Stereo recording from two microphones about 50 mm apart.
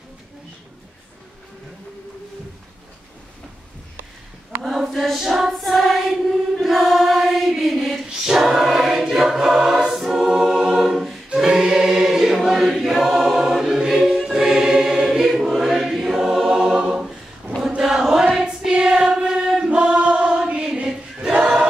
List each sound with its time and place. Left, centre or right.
4.6 s choir: centre